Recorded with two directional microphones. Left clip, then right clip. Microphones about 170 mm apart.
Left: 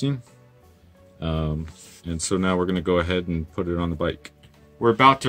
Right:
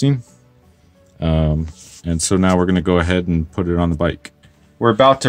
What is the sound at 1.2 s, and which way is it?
Speech, 35° right (ahead or behind).